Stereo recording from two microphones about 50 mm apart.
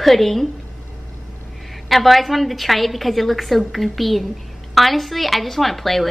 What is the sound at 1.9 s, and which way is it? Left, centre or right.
A woman's voice, centre.